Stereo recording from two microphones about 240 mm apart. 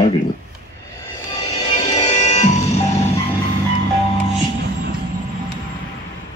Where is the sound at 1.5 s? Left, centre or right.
Centre.